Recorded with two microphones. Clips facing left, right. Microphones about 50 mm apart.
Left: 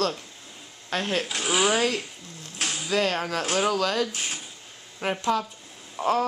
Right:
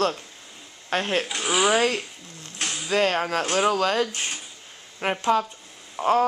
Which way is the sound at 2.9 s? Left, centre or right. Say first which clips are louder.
Right 3 dB; centre.